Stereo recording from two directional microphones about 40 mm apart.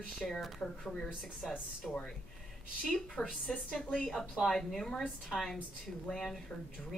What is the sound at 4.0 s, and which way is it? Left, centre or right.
A woman's voice, centre.